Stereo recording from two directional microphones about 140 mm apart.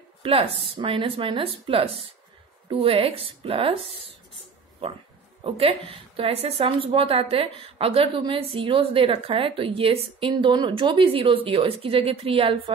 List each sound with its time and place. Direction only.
0.2 s a woman's voice: 40° right (ahead or behind)
5.4 s a woman's voice: 40° right (ahead or behind)